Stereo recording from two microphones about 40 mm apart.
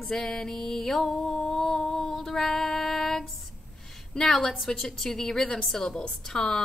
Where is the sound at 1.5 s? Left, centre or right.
Centre.